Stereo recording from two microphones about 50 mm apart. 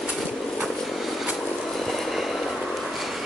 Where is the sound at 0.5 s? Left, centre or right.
Centre.